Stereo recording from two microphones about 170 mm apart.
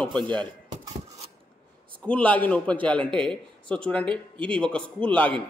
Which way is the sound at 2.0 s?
10° left (ahead or behind).